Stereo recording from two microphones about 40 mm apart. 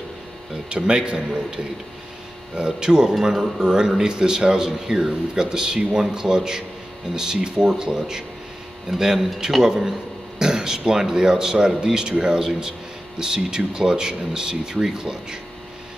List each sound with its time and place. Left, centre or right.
0.7 s speech: right
2.5 s speech: right